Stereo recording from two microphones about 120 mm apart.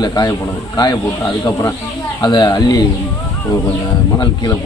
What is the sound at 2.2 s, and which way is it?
Speech, 35° left (ahead or behind).